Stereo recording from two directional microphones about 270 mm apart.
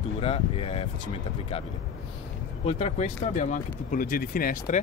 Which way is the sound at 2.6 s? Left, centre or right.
Left.